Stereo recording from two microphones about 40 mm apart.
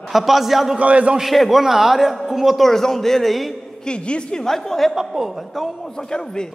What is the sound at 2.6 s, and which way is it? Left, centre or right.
Speech, centre.